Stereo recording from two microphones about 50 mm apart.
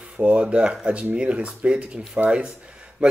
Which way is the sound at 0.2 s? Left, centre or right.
Right.